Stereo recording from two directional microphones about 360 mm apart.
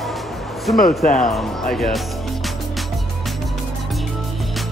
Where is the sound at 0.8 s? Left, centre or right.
Left.